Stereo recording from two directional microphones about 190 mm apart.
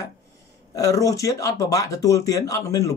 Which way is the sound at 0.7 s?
15° left (ahead or behind).